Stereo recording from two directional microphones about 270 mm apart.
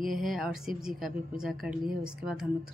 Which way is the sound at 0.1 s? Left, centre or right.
Centre.